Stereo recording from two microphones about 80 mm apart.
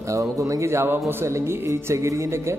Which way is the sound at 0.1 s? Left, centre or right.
Right.